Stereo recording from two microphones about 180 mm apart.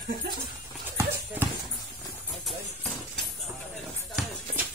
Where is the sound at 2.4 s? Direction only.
Centre (ahead or behind).